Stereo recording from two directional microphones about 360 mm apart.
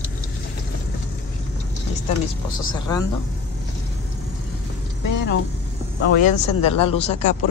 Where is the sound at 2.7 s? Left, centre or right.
Centre.